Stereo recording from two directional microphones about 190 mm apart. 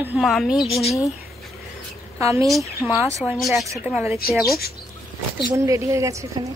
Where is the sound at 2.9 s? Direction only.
15° right (ahead or behind).